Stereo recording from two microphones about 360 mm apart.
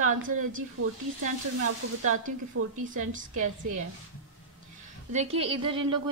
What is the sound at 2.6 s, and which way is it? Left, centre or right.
Speech, right.